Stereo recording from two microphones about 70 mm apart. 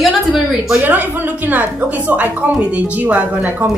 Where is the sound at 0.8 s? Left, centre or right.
Right.